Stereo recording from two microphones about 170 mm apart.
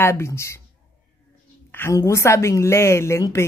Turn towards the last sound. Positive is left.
turn(degrees=15)  # may be behind; listen again after turning